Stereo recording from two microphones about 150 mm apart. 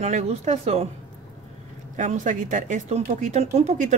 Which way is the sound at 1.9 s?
55° right (ahead or behind).